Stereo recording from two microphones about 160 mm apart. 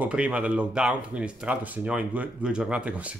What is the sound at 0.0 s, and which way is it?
Speech, 10° right (ahead or behind).